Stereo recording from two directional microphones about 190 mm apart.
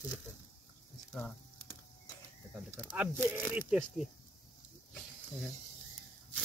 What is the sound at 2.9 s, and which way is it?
Speech, 10° right (ahead or behind).